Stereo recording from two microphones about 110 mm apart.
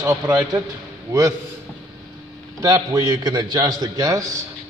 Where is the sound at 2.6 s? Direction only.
30° right (ahead or behind).